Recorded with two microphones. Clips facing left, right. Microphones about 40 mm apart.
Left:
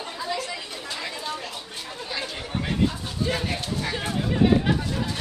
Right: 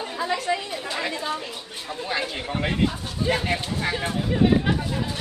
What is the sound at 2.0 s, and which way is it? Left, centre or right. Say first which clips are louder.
Speech: right 6 dB; right.